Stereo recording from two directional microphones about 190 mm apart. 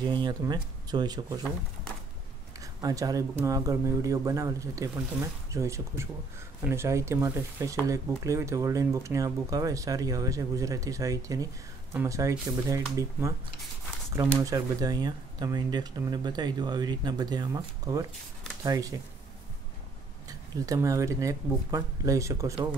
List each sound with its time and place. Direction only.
0.0 s speech: 25° right (ahead or behind)
2.6 s speech: 20° right (ahead or behind)
14.4 s speech: 20° right (ahead or behind)
20.2 s speech: 20° right (ahead or behind)